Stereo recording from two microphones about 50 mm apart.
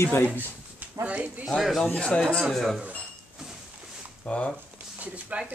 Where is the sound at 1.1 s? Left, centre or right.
Right.